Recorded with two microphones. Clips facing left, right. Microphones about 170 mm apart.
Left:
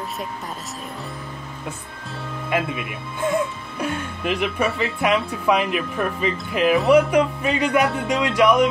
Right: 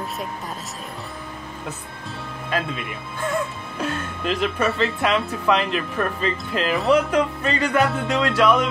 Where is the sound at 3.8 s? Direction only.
10° left (ahead or behind).